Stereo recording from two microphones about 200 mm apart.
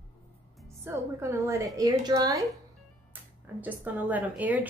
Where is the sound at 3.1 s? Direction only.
10° right (ahead or behind).